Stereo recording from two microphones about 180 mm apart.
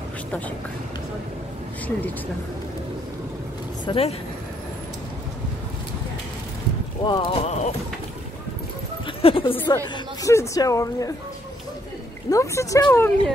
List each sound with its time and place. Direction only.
3.8 s speech: 30° left (ahead or behind)
7.0 s a woman's voice: 25° left (ahead or behind)
9.0 s speech: 30° left (ahead or behind)
9.9 s a woman's voice: 15° left (ahead or behind)
12.3 s speech: 15° left (ahead or behind)